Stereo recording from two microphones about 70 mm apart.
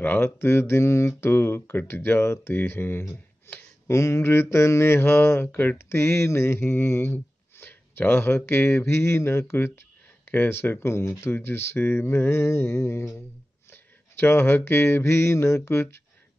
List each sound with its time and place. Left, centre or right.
0.0 s mantra: left
3.8 s mantra: left